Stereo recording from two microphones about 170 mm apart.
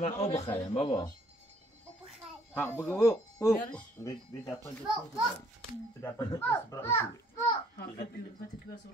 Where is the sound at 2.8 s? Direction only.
15° left (ahead or behind).